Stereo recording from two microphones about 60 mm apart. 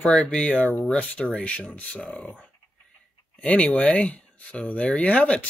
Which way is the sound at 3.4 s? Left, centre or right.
Centre.